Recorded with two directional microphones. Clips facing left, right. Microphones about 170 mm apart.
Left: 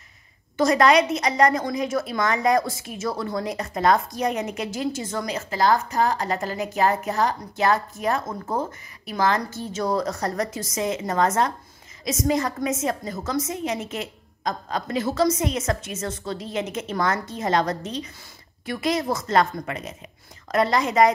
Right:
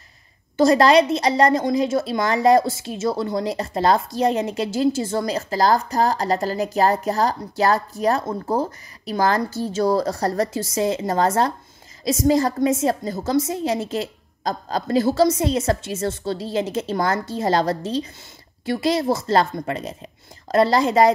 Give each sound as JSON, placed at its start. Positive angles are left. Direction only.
{"t": 0.6, "sound": "a woman's voice", "side_deg": -30}